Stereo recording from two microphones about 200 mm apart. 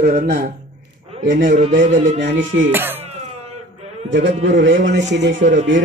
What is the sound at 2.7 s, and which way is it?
Speech, 10° right (ahead or behind).